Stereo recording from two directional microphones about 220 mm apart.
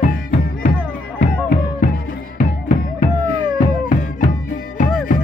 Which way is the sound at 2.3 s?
40° left (ahead or behind).